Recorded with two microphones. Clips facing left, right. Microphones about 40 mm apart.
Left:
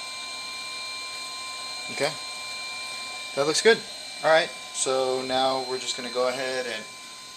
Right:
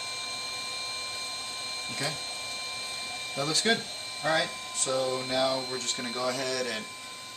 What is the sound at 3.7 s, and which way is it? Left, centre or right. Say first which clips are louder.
Speech: left 9 dB; left.